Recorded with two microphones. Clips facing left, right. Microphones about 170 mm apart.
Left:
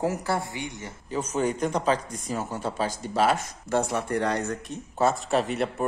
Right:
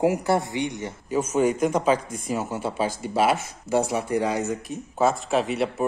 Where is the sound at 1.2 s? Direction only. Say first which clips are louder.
Right 5 dB; 10° right (ahead or behind).